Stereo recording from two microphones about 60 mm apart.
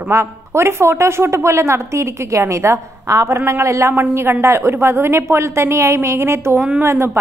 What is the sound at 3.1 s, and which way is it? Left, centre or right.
Speech, right.